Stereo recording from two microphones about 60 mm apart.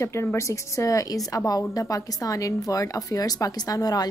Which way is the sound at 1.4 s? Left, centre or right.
Left.